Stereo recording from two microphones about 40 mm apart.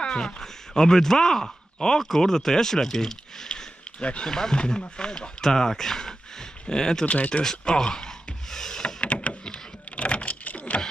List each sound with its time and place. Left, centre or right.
0.0 s speech: centre
4.0 s speech: left
4.3 s speech: centre
7.1 s speech: left
7.6 s a sound: centre
9.0 s a sound: left